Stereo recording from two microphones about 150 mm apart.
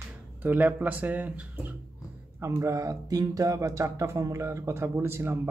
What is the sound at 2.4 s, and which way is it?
Speech, 20° right (ahead or behind).